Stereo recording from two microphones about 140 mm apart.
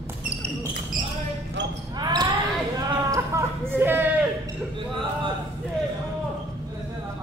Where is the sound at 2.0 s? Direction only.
30° right (ahead or behind).